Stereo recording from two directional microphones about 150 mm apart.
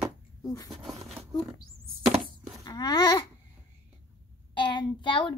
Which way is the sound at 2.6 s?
25° left (ahead or behind).